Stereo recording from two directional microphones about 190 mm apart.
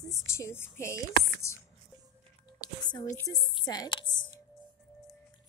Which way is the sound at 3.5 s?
20° left (ahead or behind).